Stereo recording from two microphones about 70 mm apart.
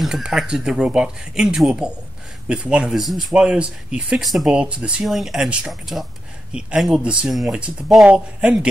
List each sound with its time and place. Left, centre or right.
0.0 s speech: centre
3.3 s speech: centre
4.2 s speech: centre
4.5 s speech: centre
5.0 s speech: centre
6.5 s speech: centre
7.2 s speech: centre
8.0 s speech: centre